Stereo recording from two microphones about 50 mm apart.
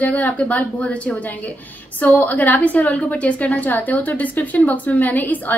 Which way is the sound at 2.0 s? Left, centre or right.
Left.